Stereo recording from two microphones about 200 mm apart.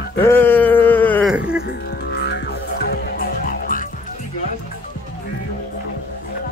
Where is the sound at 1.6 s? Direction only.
55° left (ahead or behind).